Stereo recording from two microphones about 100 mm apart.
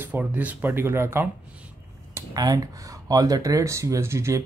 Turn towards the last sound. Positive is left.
turn(degrees=-30)  # may be behind; listen again after turning